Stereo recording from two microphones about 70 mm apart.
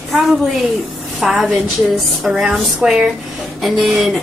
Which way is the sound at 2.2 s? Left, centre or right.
Centre.